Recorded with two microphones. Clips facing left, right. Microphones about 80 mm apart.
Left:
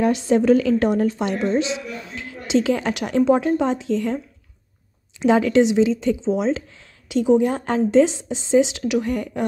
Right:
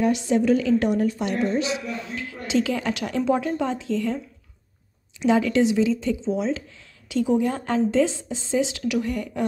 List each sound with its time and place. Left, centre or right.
0.0 s a woman's voice: left
5.2 s a woman's voice: left